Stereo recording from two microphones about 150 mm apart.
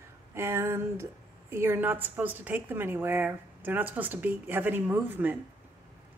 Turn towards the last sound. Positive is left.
turn(degrees=-15)  # may be behind; listen again after turning